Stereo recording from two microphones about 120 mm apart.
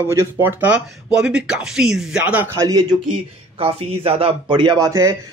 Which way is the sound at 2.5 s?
25° right (ahead or behind).